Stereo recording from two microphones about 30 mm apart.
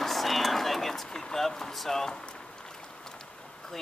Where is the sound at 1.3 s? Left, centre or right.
Centre.